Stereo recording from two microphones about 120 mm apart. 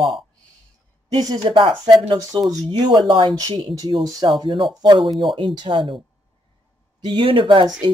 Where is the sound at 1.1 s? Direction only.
35° right (ahead or behind).